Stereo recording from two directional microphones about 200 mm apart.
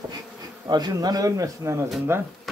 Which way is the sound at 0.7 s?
20° right (ahead or behind).